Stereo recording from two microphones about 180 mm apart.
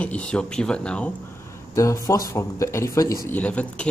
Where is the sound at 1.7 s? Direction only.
15° left (ahead or behind).